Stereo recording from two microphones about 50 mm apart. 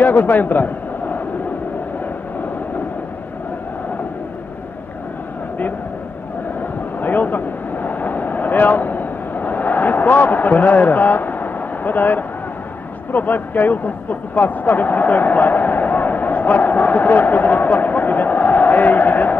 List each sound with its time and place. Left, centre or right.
0.0 s a man's voice: left
7.0 s vehicle: left
13.1 s speech: left